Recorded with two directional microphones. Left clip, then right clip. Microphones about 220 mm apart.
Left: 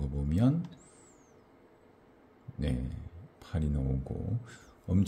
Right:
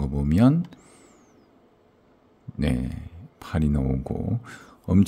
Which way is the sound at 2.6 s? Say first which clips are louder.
Right 10 dB; 40° right (ahead or behind).